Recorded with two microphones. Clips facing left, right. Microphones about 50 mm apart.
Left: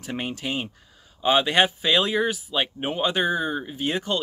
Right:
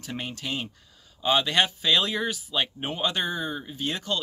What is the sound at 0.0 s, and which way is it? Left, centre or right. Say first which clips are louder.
Speech: left 4 dB; centre.